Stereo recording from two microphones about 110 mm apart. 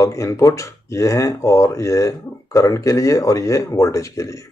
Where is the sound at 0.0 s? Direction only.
30° left (ahead or behind).